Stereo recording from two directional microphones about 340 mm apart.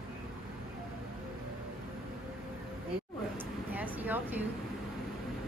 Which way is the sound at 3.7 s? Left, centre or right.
Centre.